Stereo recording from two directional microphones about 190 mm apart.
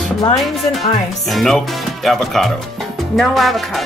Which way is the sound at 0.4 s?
Centre (ahead or behind).